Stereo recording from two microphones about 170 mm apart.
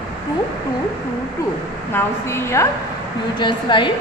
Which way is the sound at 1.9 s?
15° left (ahead or behind).